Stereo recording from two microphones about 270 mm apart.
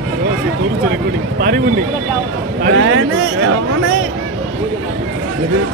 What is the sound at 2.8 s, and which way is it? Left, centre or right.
Speech, right.